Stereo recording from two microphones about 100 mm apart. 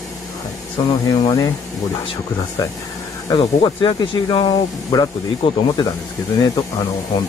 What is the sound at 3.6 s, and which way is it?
Speech, 50° left (ahead or behind).